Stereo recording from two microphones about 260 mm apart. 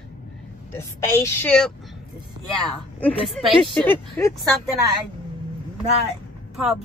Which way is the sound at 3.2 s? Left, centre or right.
Left.